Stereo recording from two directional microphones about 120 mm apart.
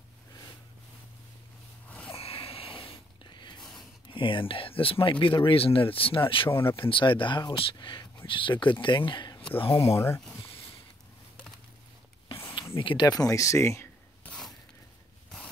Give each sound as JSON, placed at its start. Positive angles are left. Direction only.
{"t": 1.9, "sound": "snort", "side_deg": 10}
{"t": 2.1, "sound": "a sound", "side_deg": 55}
{"t": 4.1, "sound": "speech", "side_deg": 45}
{"t": 6.5, "sound": "speech", "side_deg": 20}
{"t": 6.8, "sound": "speech", "side_deg": 45}
{"t": 9.6, "sound": "speech", "side_deg": 50}
{"t": 9.9, "sound": "speech", "side_deg": 20}
{"t": 12.7, "sound": "speech", "side_deg": 40}